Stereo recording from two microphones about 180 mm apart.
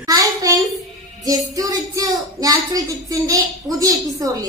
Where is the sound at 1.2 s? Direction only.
20° right (ahead or behind).